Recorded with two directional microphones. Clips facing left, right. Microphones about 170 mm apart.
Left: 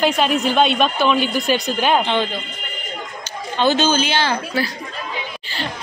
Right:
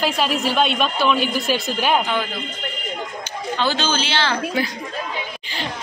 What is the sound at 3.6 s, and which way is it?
Speech, 20° left (ahead or behind).